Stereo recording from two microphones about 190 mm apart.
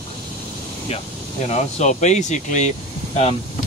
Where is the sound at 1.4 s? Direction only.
35° left (ahead or behind).